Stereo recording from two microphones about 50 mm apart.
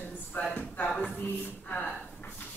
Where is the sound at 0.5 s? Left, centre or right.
Left.